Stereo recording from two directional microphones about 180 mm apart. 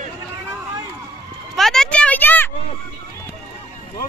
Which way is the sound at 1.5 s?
Centre (ahead or behind).